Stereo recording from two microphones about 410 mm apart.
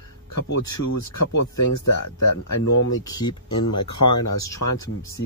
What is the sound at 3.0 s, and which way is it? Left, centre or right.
Speech, centre.